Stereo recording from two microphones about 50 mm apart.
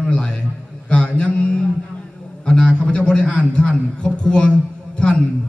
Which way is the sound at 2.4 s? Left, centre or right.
Centre.